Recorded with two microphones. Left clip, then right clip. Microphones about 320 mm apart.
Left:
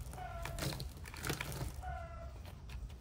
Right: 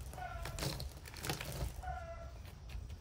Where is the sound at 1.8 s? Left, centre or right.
Right.